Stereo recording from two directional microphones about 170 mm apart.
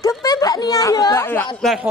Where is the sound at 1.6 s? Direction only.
Centre (ahead or behind).